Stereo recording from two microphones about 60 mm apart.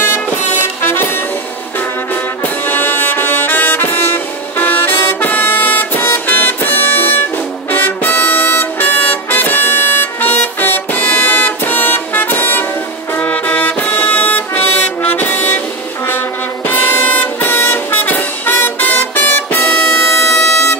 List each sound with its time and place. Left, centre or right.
0.8 s music: left
2.6 s music: left
16.7 s vehicle: left